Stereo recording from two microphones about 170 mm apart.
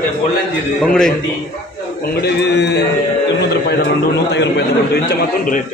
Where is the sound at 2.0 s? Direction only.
70° left (ahead or behind); by 2.8 s 90° left.